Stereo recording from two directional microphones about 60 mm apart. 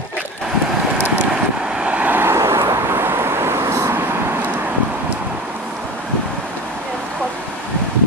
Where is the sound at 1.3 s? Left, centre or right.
Centre; by 2.3 s right.